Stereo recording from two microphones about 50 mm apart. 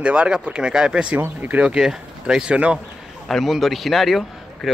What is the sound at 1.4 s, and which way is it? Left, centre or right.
Speech, right.